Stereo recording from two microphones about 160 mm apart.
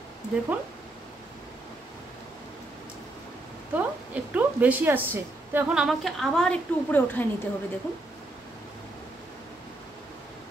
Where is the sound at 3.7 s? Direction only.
10° right (ahead or behind); by 7.3 s 10° left (ahead or behind).